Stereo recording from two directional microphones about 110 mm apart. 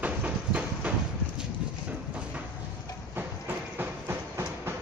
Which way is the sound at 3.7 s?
20° right (ahead or behind).